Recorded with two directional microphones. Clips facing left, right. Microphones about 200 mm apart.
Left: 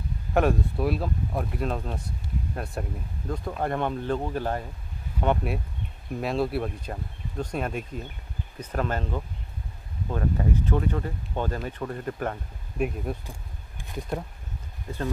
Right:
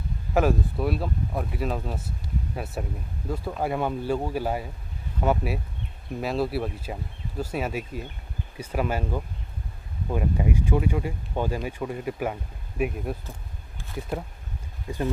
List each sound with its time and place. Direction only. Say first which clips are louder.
0.3 s speech: even; centre (ahead or behind)
13.7 s insect: right 1 dB; 15° left (ahead or behind)